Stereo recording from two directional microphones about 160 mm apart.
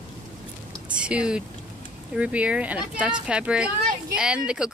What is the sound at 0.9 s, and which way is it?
A child's voice, 5° right (ahead or behind).